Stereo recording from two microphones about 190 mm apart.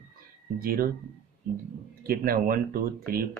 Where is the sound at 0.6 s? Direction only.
50° right (ahead or behind).